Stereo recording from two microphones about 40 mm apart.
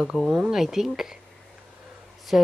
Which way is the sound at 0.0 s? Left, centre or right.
Centre.